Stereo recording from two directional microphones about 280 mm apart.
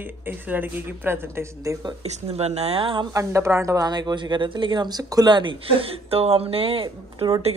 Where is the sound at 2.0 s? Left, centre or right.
Right.